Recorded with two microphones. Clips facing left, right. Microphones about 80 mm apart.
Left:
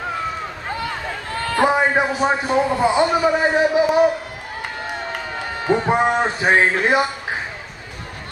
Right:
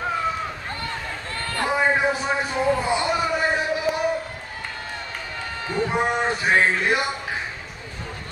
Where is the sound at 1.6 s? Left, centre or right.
Left.